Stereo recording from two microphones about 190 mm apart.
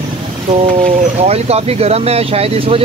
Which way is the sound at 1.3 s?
35° right (ahead or behind).